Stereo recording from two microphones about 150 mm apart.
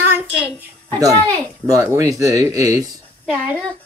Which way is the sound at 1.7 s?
20° right (ahead or behind).